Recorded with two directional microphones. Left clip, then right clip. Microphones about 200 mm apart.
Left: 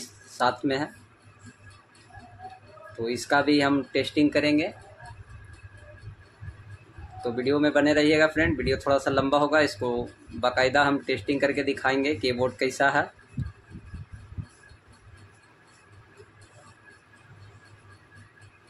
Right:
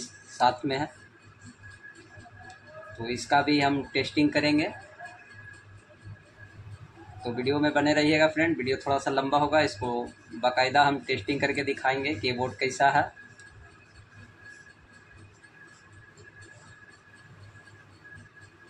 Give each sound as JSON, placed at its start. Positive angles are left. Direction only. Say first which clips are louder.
{"t": 0.4, "sound": "speech", "louder": "even", "side_deg": 20}
{"t": 3.0, "sound": "speech", "louder": "left 1 dB", "side_deg": 20}
{"t": 7.3, "sound": "speech", "louder": "left 3 dB", "side_deg": 15}